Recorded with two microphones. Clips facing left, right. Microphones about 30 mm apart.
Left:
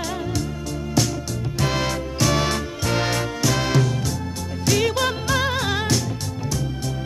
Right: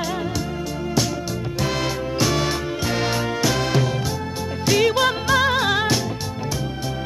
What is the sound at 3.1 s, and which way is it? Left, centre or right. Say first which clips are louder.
Music: right 1 dB; centre.